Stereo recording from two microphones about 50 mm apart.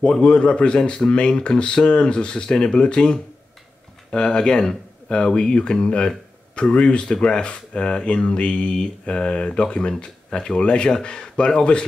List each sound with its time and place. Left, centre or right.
0.0 s speech: centre